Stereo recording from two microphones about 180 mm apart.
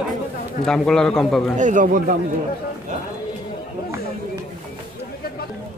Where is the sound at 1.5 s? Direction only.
45° right (ahead or behind).